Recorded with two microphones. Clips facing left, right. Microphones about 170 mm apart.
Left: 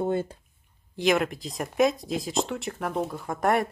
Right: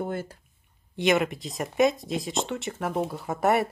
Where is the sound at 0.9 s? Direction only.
Centre (ahead or behind).